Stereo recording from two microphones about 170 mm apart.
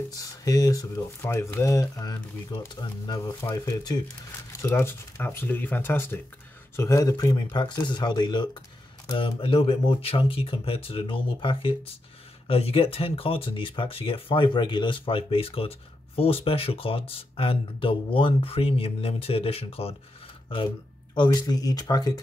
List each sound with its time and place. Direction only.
0.1 s speech: 20° left (ahead or behind)
21.1 s speech: 25° left (ahead or behind)